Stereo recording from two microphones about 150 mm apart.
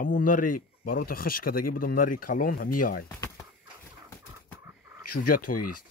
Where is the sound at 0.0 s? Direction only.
65° left (ahead or behind).